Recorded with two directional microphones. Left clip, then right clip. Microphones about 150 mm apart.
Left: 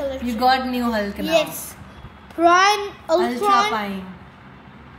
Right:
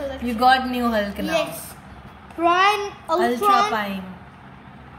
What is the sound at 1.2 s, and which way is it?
Speech, 25° left (ahead or behind).